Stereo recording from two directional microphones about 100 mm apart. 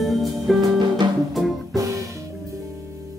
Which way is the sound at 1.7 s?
35° right (ahead or behind).